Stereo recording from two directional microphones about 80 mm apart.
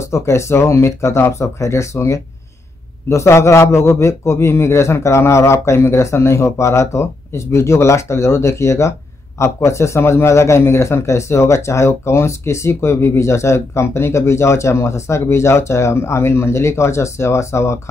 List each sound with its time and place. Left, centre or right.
0.0 s a man's voice: left